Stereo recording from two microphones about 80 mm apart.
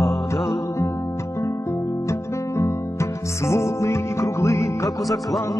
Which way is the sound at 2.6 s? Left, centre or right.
Left.